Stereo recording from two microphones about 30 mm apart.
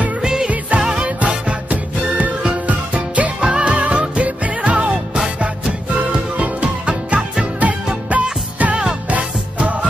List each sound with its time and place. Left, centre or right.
0.2 s music: right
0.7 s music: right
1.7 s music: right
3.3 s music: right
3.6 s music: right
6.3 s music: right
6.9 s music: right
7.6 s music: right